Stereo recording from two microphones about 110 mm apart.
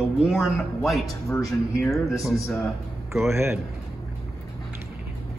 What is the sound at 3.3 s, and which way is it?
Speech, 20° right (ahead or behind).